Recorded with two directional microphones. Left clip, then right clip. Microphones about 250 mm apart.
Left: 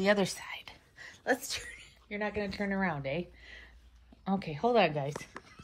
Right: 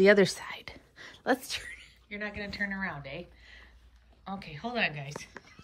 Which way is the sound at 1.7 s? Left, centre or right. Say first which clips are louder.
Left 1 dB; centre.